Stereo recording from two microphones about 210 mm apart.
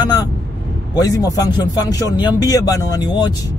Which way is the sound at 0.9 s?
20° left (ahead or behind).